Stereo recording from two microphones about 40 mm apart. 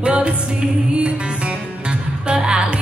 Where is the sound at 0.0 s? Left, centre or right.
Right.